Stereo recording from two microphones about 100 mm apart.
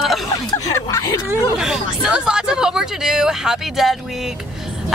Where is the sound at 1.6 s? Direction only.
5° right (ahead or behind).